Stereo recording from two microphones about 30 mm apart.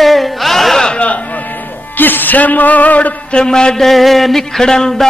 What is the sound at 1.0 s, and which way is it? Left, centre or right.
Music, left.